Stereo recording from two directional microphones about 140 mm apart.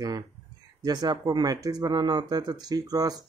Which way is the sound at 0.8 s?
30° right (ahead or behind).